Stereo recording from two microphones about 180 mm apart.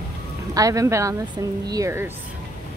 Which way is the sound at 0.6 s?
20° right (ahead or behind).